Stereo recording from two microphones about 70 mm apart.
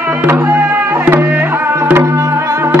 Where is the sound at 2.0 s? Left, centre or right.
Right.